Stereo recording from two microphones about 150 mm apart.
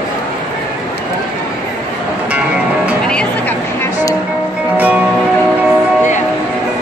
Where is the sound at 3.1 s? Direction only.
5° left (ahead or behind).